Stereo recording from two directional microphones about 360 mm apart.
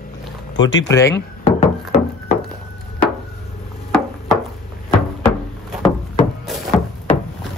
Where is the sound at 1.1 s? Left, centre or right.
Left.